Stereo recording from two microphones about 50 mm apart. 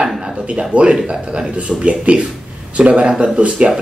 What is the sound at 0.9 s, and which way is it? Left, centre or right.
Speech, centre.